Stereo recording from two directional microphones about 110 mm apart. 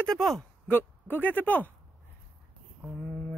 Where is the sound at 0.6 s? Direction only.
15° left (ahead or behind).